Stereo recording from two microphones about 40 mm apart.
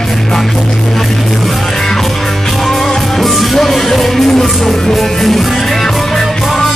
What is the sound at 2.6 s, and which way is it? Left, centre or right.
Music, centre.